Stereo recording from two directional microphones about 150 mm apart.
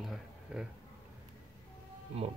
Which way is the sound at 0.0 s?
5° right (ahead or behind).